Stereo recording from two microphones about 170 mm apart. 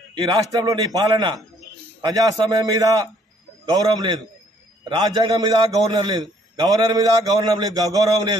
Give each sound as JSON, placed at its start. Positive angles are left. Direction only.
{"t": 0.1, "sound": "a man's voice", "side_deg": -25}